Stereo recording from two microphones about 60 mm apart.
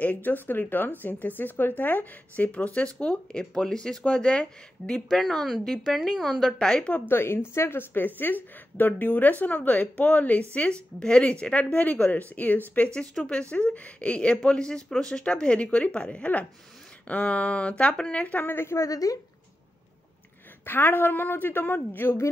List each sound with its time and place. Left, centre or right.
0.0 s a woman's voice: left; by 6.7 s centre
6.9 s a woman's voice: left; by 18.2 s centre
18.2 s a woman's voice: left
18.9 s speech: left
20.6 s a woman's voice: left